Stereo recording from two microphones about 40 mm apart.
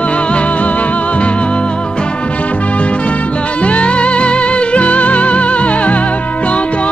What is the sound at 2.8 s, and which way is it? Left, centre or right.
Music, left.